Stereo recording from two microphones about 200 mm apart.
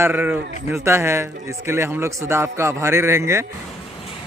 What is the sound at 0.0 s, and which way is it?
A man's voice, 10° right (ahead or behind).